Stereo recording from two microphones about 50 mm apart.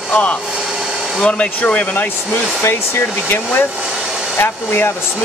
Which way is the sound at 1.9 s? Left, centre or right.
Left.